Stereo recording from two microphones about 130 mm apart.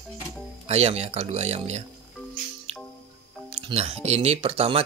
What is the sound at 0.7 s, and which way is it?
Speech, 55° right (ahead or behind).